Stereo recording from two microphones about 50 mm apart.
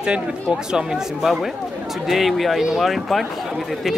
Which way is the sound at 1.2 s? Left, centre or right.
Centre.